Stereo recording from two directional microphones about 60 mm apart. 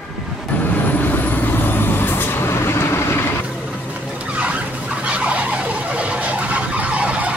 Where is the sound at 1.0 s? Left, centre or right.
Left.